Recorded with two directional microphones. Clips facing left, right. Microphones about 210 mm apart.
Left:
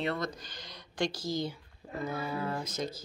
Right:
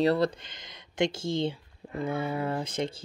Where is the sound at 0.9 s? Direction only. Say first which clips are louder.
Right 5 dB; 25° right (ahead or behind).